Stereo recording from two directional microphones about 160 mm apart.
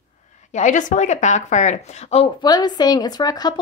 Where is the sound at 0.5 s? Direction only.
50° left (ahead or behind).